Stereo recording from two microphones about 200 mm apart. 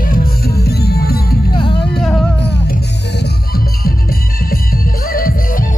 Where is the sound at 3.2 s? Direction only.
50° left (ahead or behind).